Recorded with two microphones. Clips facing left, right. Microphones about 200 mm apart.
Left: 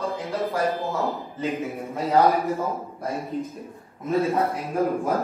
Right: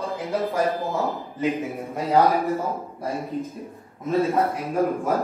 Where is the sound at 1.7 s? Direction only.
Centre (ahead or behind).